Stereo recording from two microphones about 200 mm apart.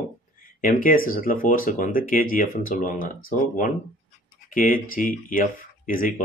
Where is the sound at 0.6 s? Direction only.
45° left (ahead or behind).